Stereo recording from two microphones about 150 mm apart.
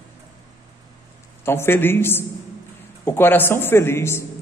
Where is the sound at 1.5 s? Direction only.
15° left (ahead or behind).